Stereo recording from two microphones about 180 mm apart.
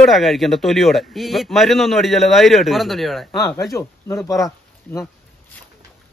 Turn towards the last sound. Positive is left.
turn(degrees=15)  # may be behind; listen again after turning